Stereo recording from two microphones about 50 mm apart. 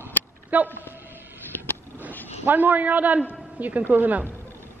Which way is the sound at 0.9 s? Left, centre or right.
Right.